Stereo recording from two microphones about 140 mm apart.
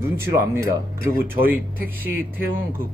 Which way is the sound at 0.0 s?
20° right (ahead or behind).